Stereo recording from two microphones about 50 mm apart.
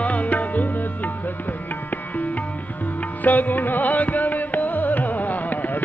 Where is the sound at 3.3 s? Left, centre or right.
Left.